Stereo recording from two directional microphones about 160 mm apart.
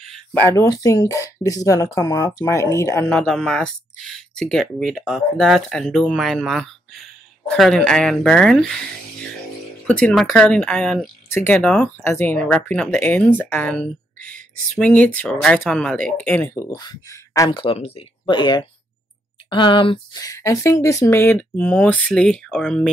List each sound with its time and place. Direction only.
0.0 s speech: 5° left (ahead or behind)
9.8 s speech: 10° left (ahead or behind)